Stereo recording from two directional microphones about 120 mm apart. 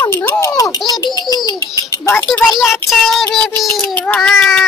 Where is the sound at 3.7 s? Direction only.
10° left (ahead or behind).